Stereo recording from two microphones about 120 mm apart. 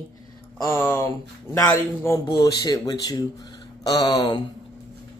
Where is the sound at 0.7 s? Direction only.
20° left (ahead or behind).